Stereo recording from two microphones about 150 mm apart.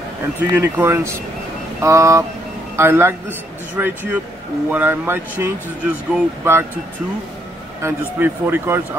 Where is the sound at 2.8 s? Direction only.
15° right (ahead or behind).